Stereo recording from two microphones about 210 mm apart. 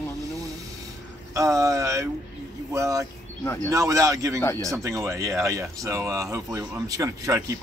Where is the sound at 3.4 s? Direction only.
15° left (ahead or behind).